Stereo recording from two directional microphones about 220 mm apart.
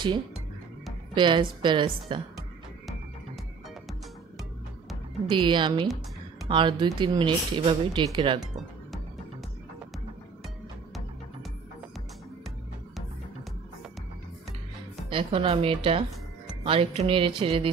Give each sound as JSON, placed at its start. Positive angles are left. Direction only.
{"t": 1.1, "sound": "speech", "side_deg": -20}
{"t": 5.3, "sound": "speech", "side_deg": -20}
{"t": 15.0, "sound": "speech", "side_deg": -25}